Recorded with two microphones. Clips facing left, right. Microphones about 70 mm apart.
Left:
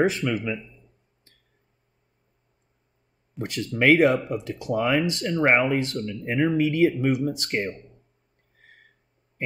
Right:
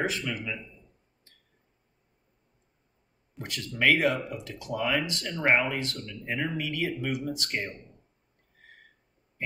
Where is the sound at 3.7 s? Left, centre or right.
Left.